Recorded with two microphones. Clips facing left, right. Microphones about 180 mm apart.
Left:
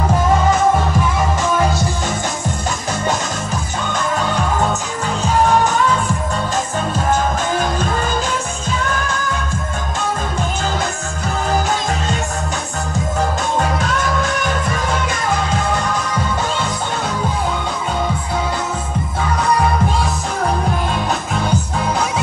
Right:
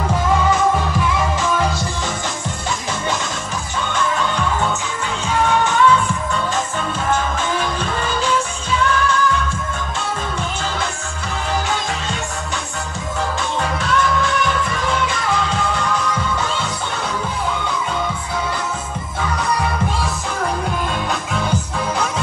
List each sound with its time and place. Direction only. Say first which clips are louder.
3.9 s music: left 1 dB; 40° left (ahead or behind)
13.6 s music: right 2 dB; 45° left (ahead or behind)